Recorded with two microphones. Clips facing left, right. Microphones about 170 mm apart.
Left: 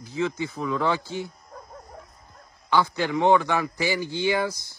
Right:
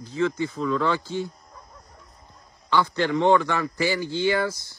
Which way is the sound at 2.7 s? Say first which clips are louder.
Right 1 dB; 15° left (ahead or behind).